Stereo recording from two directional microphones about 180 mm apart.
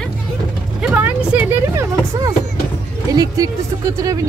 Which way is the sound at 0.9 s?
10° right (ahead or behind).